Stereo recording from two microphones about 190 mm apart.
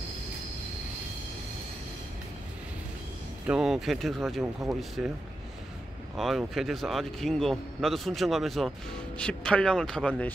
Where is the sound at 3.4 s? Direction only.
5° right (ahead or behind).